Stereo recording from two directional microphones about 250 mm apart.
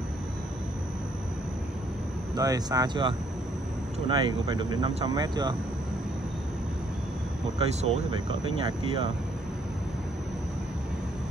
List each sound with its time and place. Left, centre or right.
2.3 s speech: centre
7.5 s speech: right